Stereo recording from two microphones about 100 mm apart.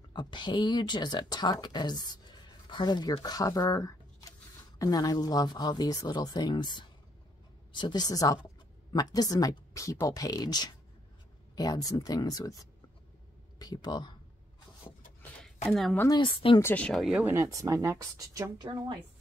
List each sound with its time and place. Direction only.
0.1 s speech: 50° left (ahead or behind)
15.7 s speech: centre (ahead or behind)
16.2 s speech: 60° left (ahead or behind)
16.6 s speech: 15° left (ahead or behind)
16.9 s speech: centre (ahead or behind)
17.2 s a woman's voice: 30° right (ahead or behind); by 18.9 s 45° right (ahead or behind)